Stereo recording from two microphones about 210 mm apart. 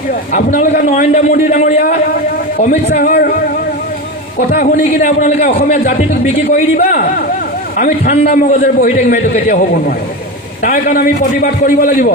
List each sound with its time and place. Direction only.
0.3 s a man's voice: 40° left (ahead or behind)
4.4 s a man's voice: 40° left (ahead or behind)